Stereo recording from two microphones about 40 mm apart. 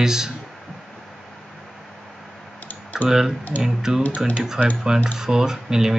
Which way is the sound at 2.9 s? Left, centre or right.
Centre.